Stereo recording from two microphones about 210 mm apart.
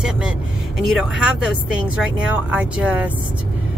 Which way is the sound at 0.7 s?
5° right (ahead or behind).